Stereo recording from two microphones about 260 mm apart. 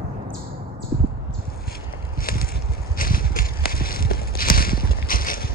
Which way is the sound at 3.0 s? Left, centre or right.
Left.